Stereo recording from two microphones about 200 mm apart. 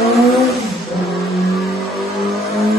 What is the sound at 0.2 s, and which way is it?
Vehicle, centre (ahead or behind).